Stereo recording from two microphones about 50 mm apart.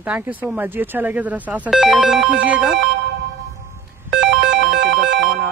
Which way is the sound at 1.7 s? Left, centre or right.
Centre.